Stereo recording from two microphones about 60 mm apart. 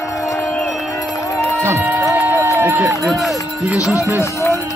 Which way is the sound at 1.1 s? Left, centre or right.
Left.